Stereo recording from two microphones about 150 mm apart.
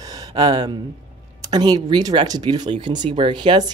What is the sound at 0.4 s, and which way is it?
Speech, 30° right (ahead or behind).